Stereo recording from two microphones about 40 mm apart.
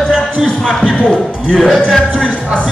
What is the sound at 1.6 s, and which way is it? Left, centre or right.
Speech, centre.